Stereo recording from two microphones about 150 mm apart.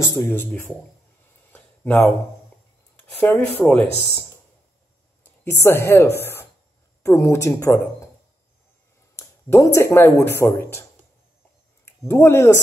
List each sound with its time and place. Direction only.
0.0 s speech: 20° left (ahead or behind)
1.5 s a sound: 5° left (ahead or behind)
3.2 s speech: 10° left (ahead or behind)
5.2 s a woman's voice: 15° left (ahead or behind)
9.1 s speech: 20° left (ahead or behind)
12.1 s speech: 15° left (ahead or behind)